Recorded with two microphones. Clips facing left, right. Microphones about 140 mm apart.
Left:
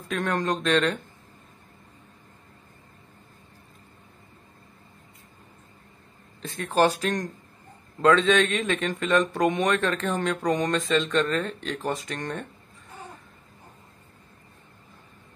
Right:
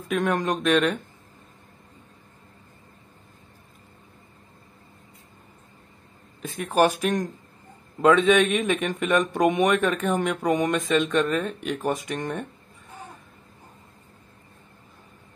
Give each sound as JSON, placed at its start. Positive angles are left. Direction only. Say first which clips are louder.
{"t": 0.1, "sound": "speech", "louder": "right 2 dB", "side_deg": -15}
{"t": 6.4, "sound": "speech", "louder": "right 1 dB", "side_deg": -15}